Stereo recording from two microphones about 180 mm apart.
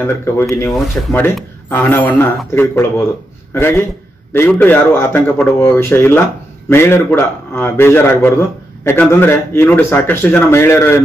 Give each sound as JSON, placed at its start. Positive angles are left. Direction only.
{"t": 0.0, "sound": "a man's voice", "side_deg": 15}